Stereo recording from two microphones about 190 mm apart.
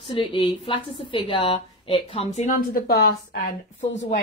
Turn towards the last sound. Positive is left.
turn(degrees=70)  # may be behind; listen again after turning